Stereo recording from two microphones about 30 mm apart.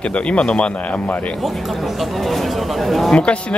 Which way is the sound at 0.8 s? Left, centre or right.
Left.